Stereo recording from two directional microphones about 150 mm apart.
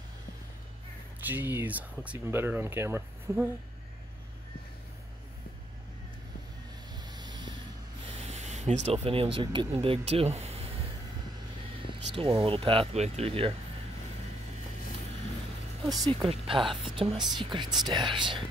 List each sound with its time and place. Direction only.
1.2 s speech: 15° right (ahead or behind)
6.9 s vehicle: 25° right (ahead or behind)
8.2 s speech: 45° right (ahead or behind)
11.9 s speech: 35° right (ahead or behind)
15.9 s speech: 30° right (ahead or behind)